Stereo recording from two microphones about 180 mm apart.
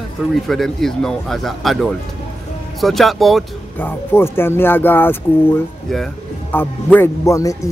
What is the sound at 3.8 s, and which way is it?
Speech, 15° left (ahead or behind).